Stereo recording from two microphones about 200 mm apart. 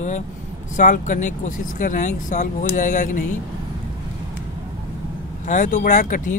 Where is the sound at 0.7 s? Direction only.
40° left (ahead or behind).